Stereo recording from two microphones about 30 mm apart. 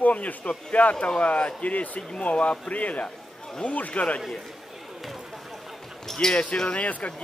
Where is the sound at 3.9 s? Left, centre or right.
Left.